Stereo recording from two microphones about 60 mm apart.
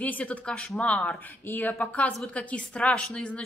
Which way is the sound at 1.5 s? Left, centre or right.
Left.